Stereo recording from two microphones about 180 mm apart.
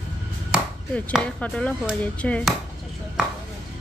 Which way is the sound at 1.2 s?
5° left (ahead or behind).